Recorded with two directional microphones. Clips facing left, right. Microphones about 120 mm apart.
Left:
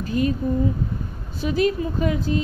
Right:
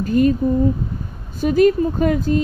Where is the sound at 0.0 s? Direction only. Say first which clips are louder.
Right 7 dB; 45° right (ahead or behind).